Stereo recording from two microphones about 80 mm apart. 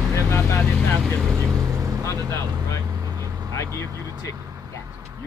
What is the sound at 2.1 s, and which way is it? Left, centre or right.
Speech, right.